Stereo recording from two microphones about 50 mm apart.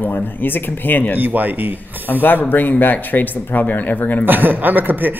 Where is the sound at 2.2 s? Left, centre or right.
Left.